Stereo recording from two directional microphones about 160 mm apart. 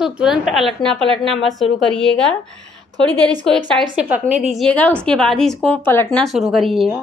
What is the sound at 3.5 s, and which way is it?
A woman's voice, centre (ahead or behind).